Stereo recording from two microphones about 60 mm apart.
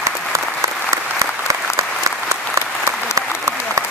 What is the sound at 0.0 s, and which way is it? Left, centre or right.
Applause, right.